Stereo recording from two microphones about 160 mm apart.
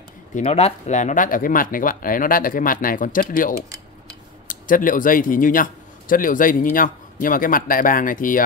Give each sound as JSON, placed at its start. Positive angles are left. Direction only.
{"t": 0.3, "sound": "a man's voice", "side_deg": 45}